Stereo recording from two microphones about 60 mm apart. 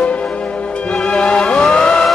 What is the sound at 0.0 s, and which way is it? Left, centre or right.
Music, left.